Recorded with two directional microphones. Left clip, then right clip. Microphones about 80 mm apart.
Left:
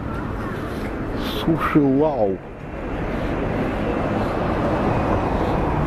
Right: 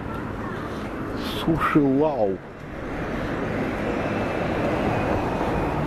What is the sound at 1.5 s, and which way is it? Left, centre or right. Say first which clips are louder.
Speech: left 2 dB; centre.